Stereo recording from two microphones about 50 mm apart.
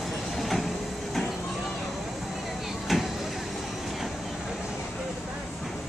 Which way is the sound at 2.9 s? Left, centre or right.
Centre.